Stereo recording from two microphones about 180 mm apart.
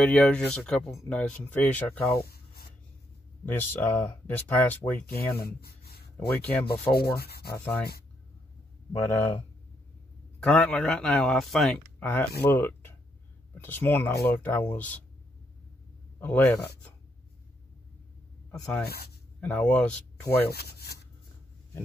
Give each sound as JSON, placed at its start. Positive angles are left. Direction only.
{"t": 0.0, "sound": "a man's voice", "side_deg": 5}
{"t": 2.2, "sound": "a sound", "side_deg": 60}
{"t": 3.4, "sound": "speech", "side_deg": 10}
{"t": 5.1, "sound": "speech", "side_deg": 60}
{"t": 6.1, "sound": "speech", "side_deg": 10}
{"t": 7.2, "sound": "sanding", "side_deg": 60}
{"t": 7.5, "sound": "speech", "side_deg": 10}
{"t": 9.0, "sound": "speech", "side_deg": 15}
{"t": 10.4, "sound": "a man's voice", "side_deg": 5}
{"t": 16.2, "sound": "speech", "side_deg": 10}
{"t": 18.5, "sound": "a man's voice", "side_deg": 5}
{"t": 18.9, "sound": "sanding", "side_deg": 60}
{"t": 19.4, "sound": "speech", "side_deg": 5}
{"t": 20.4, "sound": "speech", "side_deg": 60}